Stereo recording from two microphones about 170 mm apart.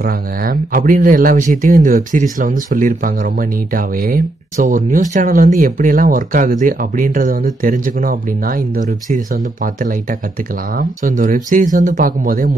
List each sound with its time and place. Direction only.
0.0 s speech: 60° right (ahead or behind)